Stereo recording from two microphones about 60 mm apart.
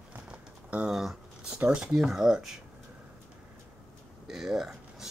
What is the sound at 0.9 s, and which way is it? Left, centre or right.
Speech, centre.